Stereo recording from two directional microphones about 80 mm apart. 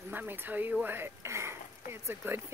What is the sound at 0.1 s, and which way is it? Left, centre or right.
Speech, right.